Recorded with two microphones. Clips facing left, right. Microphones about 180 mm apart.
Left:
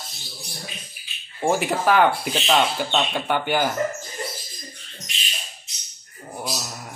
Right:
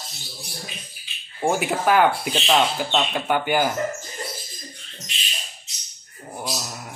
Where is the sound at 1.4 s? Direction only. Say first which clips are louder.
Even; centre (ahead or behind).